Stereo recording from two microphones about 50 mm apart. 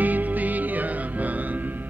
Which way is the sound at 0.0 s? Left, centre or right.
Right.